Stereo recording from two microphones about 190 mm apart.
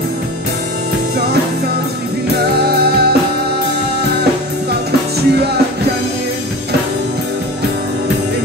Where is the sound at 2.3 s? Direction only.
55° right (ahead or behind).